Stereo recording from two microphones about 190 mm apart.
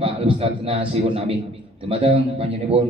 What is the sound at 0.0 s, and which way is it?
A man's voice, 30° right (ahead or behind).